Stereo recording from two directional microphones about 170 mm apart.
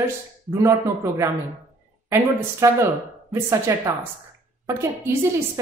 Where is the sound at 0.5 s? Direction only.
15° right (ahead or behind).